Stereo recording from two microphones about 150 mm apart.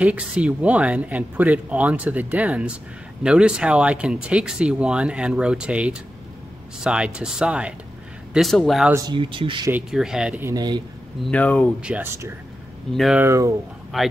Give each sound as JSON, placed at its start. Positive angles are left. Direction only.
{"t": 0.0, "sound": "speech", "side_deg": -10}
{"t": 8.9, "sound": "speech", "side_deg": -30}
{"t": 9.7, "sound": "speech", "side_deg": -5}
{"t": 10.4, "sound": "speech", "side_deg": -25}
{"t": 11.2, "sound": "speech", "side_deg": 10}
{"t": 11.8, "sound": "speech", "side_deg": -10}
{"t": 13.2, "sound": "speech", "side_deg": -20}
{"t": 13.9, "sound": "speech", "side_deg": 0}